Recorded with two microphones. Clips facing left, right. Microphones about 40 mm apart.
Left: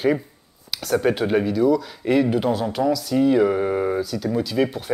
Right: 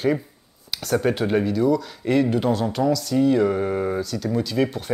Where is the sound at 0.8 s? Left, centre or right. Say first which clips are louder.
Left 1 dB; centre.